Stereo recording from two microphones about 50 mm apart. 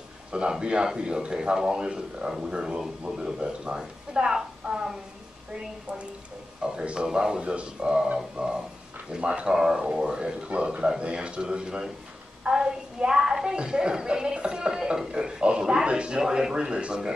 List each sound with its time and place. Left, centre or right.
0.3 s a man's voice: centre
6.6 s a man's voice: centre